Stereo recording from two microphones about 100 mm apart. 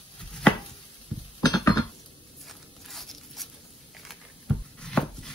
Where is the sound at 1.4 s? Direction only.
40° left (ahead or behind).